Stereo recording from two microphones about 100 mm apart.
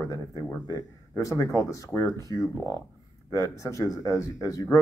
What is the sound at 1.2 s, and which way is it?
Speech, 30° left (ahead or behind).